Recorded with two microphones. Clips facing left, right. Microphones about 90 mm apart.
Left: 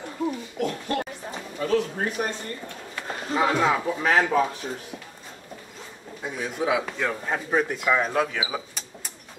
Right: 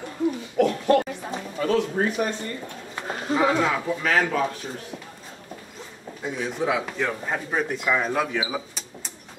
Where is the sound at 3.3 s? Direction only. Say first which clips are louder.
Right 1 dB; centre (ahead or behind).